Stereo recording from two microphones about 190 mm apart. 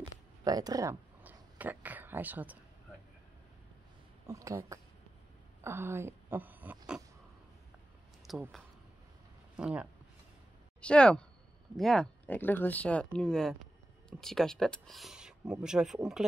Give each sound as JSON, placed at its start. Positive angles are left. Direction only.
{"t": 0.0, "sound": "a sound", "side_deg": -20}
{"t": 4.3, "sound": "speech", "side_deg": -15}
{"t": 8.3, "sound": "speech", "side_deg": 0}
{"t": 9.6, "sound": "speech", "side_deg": -5}
{"t": 10.8, "sound": "speech", "side_deg": 5}